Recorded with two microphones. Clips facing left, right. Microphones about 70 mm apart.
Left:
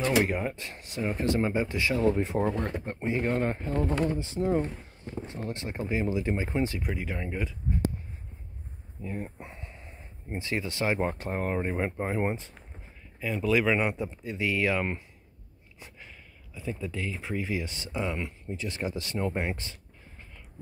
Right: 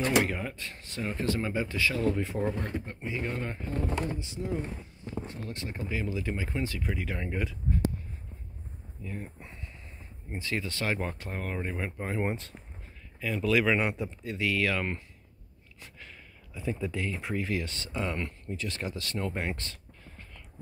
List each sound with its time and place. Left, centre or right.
0.3 s speech: left
2.6 s speech: left
5.2 s speech: left
6.9 s speech: centre
9.0 s speech: left
12.3 s speech: centre
16.5 s speech: centre
18.6 s speech: centre